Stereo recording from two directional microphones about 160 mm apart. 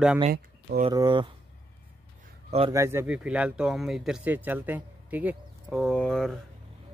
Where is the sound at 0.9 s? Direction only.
25° right (ahead or behind).